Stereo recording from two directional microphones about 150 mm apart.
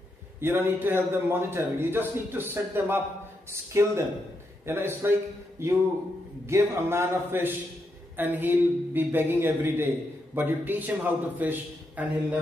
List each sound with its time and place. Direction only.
0.4 s a man's voice: 15° right (ahead or behind)